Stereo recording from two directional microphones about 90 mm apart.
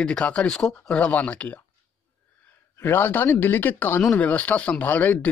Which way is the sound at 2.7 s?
25° left (ahead or behind).